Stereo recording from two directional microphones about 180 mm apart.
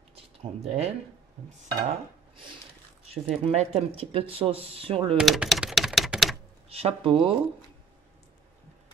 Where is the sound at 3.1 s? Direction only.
35° right (ahead or behind).